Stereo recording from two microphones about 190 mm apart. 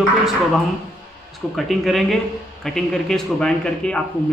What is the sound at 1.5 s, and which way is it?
Speech, centre (ahead or behind).